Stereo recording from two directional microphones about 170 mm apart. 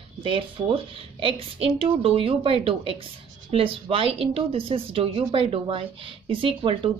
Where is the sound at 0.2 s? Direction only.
30° right (ahead or behind).